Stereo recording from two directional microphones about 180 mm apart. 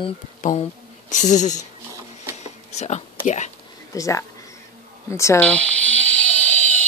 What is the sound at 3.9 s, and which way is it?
Speech, 15° left (ahead or behind).